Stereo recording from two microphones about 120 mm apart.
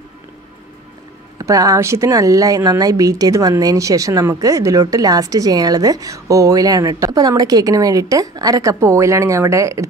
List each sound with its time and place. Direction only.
1.4 s speech: 30° right (ahead or behind)